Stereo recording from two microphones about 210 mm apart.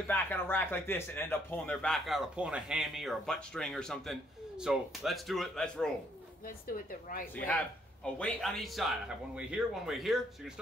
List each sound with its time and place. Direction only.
0.0 s speech: 10° left (ahead or behind)
6.4 s speech: 45° left (ahead or behind)
7.3 s speech: 5° left (ahead or behind)